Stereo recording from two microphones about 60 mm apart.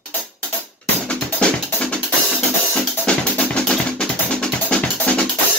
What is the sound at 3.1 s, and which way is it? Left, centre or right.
Music, centre.